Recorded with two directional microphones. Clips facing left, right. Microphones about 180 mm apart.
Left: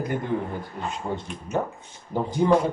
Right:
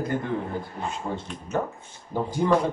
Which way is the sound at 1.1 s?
10° left (ahead or behind).